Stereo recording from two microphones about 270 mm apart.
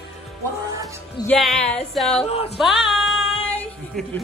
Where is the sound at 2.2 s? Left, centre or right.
Left.